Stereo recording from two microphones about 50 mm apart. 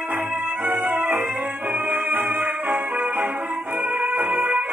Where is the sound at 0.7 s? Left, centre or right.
Right.